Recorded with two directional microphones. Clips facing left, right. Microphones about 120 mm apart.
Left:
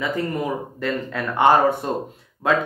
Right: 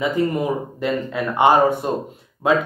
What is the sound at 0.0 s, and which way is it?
Speech, 15° right (ahead or behind).